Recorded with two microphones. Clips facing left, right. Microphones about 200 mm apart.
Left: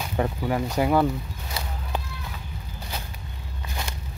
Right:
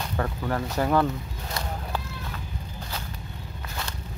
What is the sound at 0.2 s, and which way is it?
Speech, 10° left (ahead or behind).